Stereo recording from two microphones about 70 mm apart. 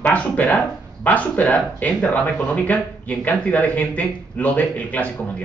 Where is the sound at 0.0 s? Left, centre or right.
Left.